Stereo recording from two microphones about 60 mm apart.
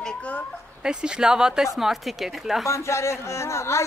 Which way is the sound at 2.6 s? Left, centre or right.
Left.